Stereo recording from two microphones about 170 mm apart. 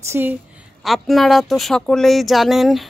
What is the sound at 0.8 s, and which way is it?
A woman's voice, centre (ahead or behind).